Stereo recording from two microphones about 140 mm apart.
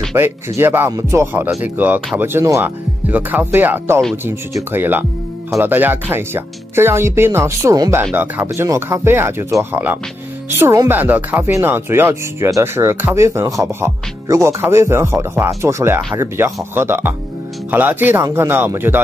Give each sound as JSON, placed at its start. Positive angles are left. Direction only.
{"t": 0.1, "sound": "speech", "side_deg": -15}